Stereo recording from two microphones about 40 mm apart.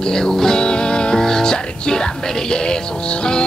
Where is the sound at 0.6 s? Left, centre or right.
Left.